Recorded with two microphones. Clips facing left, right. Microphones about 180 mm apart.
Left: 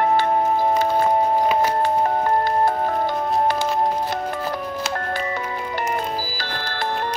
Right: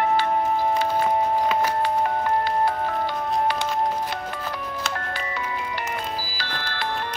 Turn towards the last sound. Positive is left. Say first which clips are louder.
# left 4 dB
turn(degrees=45)  # may be behind; listen again after turning